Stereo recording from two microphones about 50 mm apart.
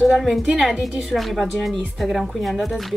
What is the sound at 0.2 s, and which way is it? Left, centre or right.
A woman's voice, centre.